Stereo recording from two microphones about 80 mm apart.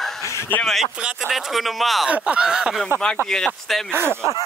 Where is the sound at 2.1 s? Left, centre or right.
Centre.